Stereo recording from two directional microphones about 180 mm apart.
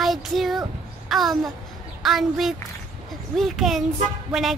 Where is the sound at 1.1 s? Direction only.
Centre (ahead or behind).